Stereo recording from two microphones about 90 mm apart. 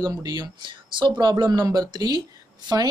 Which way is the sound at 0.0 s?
40° right (ahead or behind).